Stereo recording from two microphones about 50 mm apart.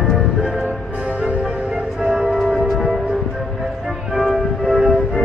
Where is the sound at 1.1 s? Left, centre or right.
Right.